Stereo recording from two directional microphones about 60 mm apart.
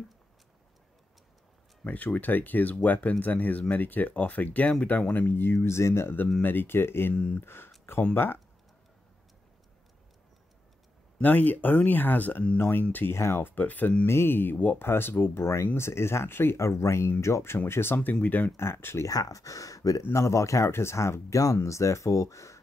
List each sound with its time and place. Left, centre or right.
1.9 s speech: left
6.4 s speech: left
7.2 s speech: left
7.4 s speech: left
11.1 s speech: left
13.2 s speech: left
13.6 s speech: left
14.0 s speech: left
16.5 s speech: left
18.6 s speech: left
19.0 s speech: left
20.0 s speech: left